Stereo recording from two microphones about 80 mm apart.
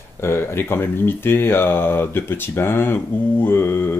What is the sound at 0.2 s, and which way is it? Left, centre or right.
Speech, left.